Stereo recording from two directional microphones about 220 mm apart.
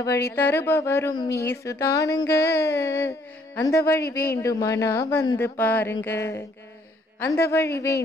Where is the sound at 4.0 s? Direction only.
45° left (ahead or behind).